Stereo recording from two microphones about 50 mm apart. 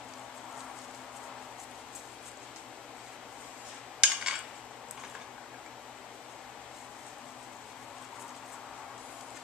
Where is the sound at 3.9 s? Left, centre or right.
Centre.